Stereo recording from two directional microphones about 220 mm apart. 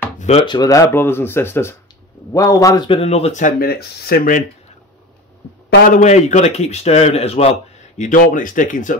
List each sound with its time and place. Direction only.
0.2 s speech: 30° left (ahead or behind)
5.9 s speech: 35° left (ahead or behind)